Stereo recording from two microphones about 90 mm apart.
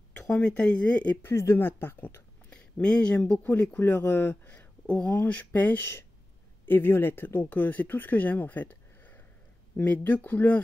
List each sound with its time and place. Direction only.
0.2 s speech: 15° left (ahead or behind)
1.2 s speech: 30° left (ahead or behind); by 3.8 s 15° left (ahead or behind)
3.8 s speech: 25° left (ahead or behind)